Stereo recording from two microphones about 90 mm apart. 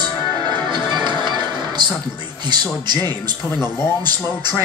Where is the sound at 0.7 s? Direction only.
55° right (ahead or behind).